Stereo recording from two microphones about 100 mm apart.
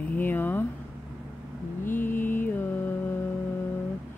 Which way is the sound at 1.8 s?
20° left (ahead or behind).